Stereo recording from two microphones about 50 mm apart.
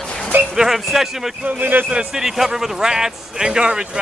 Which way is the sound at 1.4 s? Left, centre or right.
Right.